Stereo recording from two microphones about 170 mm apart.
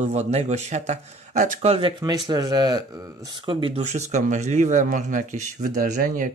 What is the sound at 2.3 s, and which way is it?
Speech, 25° right (ahead or behind).